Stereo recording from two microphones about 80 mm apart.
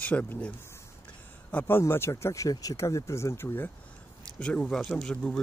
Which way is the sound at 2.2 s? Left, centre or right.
Left.